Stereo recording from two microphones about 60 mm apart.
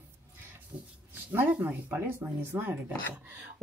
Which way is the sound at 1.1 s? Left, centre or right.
Right.